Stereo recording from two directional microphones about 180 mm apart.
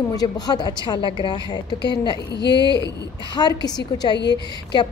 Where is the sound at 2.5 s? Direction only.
25° right (ahead or behind).